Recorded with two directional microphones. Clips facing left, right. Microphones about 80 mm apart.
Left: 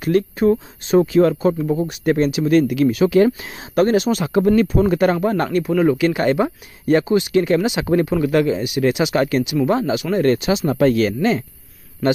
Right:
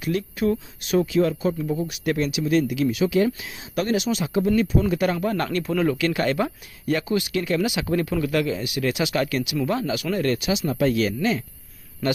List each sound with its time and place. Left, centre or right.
0.0 s speech: left
0.5 s speech: left
5.5 s speech: centre; by 11.1 s left